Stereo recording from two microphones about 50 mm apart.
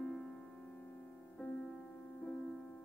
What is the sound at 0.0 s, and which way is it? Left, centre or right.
Music, centre.